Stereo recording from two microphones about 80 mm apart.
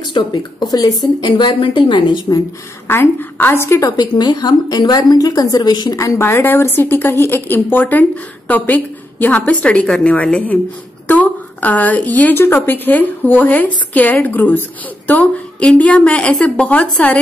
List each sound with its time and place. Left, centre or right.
0.0 s speech: left
1.3 s a woman's voice: left
2.9 s a woman's voice: left
3.9 s a woman's voice: left
5.9 s a woman's voice: left; by 17.2 s centre